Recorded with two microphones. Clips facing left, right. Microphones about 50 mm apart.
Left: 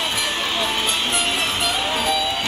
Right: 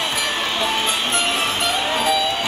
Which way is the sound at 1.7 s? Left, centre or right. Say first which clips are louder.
Right 3 dB; centre.